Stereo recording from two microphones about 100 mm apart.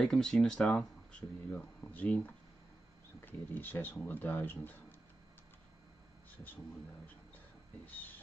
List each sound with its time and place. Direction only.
0.0 s speech: 5° left (ahead or behind)
3.3 s speech: 20° left (ahead or behind)
6.3 s speech: 20° left (ahead or behind)
7.8 s speech: 15° left (ahead or behind)